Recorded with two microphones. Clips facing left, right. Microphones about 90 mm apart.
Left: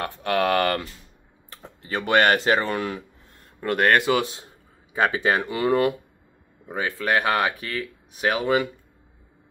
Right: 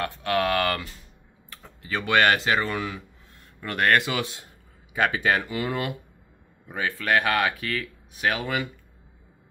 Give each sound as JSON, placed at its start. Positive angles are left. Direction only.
{"t": 0.0, "sound": "speech", "side_deg": 35}
{"t": 1.5, "sound": "tick-tock", "side_deg": 25}
{"t": 2.0, "sound": "speech", "side_deg": 35}
{"t": 5.5, "sound": "speech", "side_deg": 40}
{"t": 6.6, "sound": "speech", "side_deg": 25}